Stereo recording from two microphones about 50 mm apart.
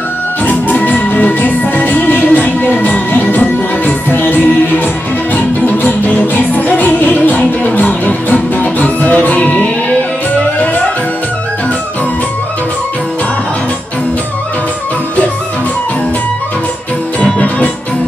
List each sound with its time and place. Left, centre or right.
0.5 s music: left
17.2 s music: left